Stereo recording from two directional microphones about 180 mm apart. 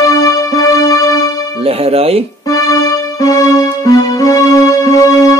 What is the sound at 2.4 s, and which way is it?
Music, 20° left (ahead or behind).